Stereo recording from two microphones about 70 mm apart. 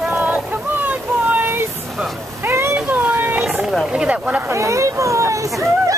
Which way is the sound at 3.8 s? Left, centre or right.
Centre.